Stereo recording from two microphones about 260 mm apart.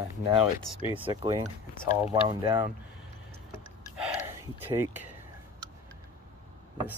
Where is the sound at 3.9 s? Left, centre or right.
Centre.